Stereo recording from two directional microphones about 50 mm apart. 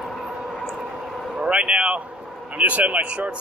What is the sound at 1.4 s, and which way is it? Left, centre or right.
Speech, right.